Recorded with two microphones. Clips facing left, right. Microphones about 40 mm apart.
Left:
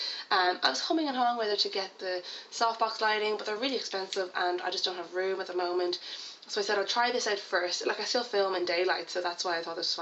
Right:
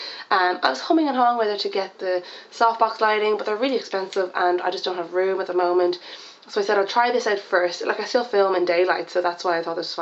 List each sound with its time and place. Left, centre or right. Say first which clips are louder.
0.3 s speech: right 8 dB; centre
4.6 s speech: right 9 dB; centre
4.9 s speech: right 10 dB; right
6.5 s speech: right 10 dB; centre